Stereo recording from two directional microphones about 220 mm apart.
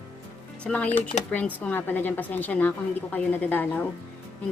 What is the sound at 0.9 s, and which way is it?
Speech, 30° left (ahead or behind).